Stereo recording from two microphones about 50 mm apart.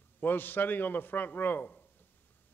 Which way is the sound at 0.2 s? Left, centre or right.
Left.